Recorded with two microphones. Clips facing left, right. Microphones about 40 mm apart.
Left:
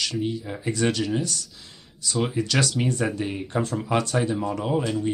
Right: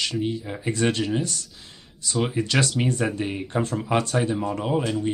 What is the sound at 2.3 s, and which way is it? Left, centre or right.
Speech, right.